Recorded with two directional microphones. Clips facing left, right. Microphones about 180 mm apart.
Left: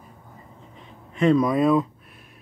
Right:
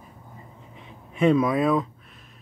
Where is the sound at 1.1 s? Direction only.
5° right (ahead or behind).